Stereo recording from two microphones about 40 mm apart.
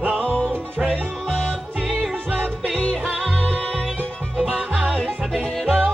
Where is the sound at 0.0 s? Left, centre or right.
Right.